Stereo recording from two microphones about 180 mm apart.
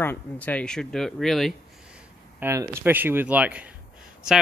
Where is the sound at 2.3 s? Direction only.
15° right (ahead or behind).